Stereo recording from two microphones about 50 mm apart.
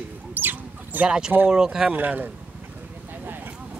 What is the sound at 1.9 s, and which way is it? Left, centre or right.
Speech, right.